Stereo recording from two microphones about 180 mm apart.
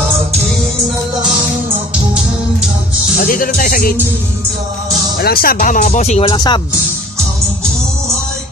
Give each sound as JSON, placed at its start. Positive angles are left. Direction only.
{"t": 3.2, "sound": "speech", "side_deg": 50}
{"t": 5.2, "sound": "speech", "side_deg": 55}